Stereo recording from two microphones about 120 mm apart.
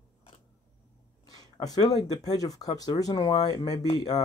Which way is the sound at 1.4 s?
35° left (ahead or behind).